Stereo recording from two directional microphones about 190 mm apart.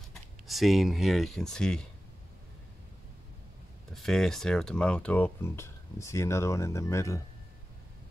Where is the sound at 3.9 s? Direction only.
Centre (ahead or behind).